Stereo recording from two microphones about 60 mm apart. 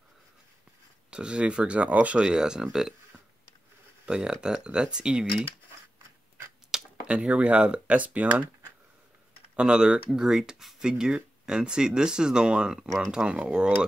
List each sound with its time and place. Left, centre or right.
1.1 s speech: centre
2.2 s speech: centre
4.0 s speech: centre
6.7 s tick-tock: centre
7.1 s speech: centre
9.6 s speech: centre